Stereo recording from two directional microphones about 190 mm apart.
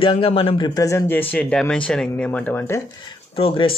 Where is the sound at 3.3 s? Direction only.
30° left (ahead or behind).